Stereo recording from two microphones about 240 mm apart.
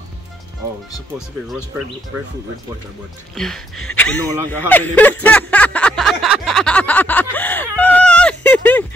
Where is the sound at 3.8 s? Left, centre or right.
Centre.